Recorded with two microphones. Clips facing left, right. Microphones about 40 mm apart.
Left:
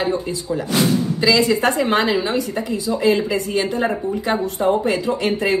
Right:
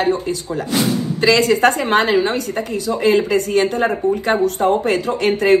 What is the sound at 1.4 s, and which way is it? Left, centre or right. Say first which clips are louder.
Speech: right 3 dB; right.